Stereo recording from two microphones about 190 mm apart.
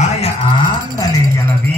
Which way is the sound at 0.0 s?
35° left (ahead or behind).